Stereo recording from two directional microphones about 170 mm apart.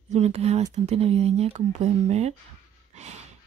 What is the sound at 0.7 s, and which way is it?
Speech, 40° right (ahead or behind).